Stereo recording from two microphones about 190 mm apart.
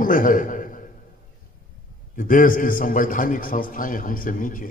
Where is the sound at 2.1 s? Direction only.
45° left (ahead or behind).